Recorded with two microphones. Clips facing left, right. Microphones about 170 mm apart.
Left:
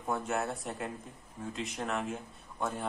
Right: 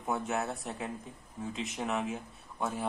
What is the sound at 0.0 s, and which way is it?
Speech, centre (ahead or behind).